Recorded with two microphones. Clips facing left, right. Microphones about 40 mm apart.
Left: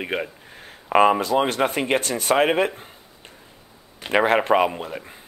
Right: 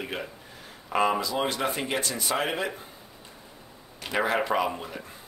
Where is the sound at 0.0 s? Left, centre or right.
Left.